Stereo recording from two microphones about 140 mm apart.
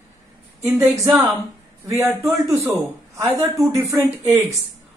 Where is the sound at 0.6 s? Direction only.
20° right (ahead or behind).